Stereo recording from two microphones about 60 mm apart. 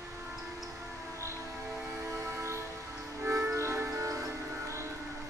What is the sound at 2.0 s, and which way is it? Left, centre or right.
Music, right.